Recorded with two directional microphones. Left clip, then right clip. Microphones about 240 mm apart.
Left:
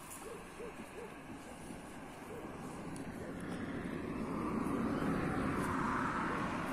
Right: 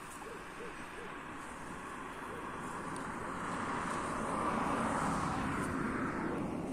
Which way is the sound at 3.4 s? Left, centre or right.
Right.